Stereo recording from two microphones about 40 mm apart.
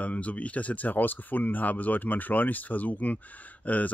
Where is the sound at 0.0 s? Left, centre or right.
Left.